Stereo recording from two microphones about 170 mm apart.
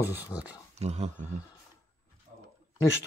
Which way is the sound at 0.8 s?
40° right (ahead or behind).